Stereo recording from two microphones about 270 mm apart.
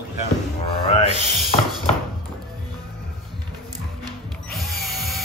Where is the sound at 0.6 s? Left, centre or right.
Left.